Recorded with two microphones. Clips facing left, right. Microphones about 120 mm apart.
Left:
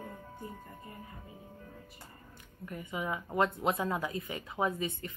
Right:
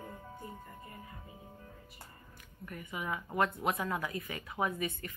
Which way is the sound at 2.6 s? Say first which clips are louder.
Left 3 dB; 20° left (ahead or behind).